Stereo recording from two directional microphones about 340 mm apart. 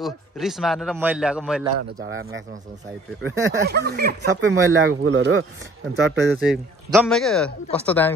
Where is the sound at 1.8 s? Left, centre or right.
Right.